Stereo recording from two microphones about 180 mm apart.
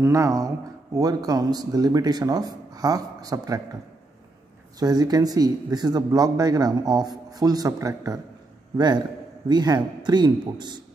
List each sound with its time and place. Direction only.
0.0 s speech: 15° right (ahead or behind)
4.7 s speech: 20° right (ahead or behind)